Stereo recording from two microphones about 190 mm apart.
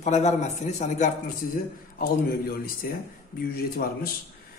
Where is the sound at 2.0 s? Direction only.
50° left (ahead or behind).